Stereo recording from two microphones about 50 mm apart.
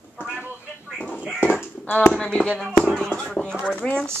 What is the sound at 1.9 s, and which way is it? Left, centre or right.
Speech, left.